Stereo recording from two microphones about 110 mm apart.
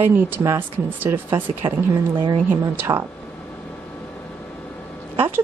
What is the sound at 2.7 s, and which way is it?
Speech, 20° right (ahead or behind).